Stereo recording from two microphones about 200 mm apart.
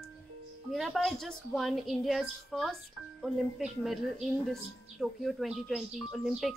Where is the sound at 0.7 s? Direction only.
Centre (ahead or behind).